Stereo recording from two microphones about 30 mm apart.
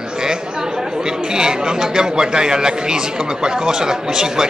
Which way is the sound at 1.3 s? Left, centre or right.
Right.